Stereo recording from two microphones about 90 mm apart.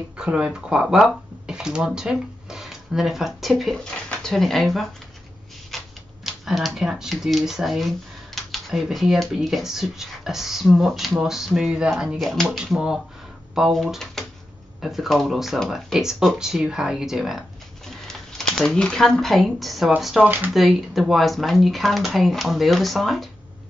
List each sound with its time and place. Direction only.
0.2 s speech: 10° right (ahead or behind)
12.2 s speech: 5° left (ahead or behind)
20.2 s speech: 20° right (ahead or behind)
20.5 s speech: centre (ahead or behind)